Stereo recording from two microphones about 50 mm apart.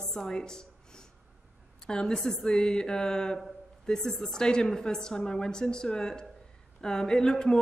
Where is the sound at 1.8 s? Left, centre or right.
Centre.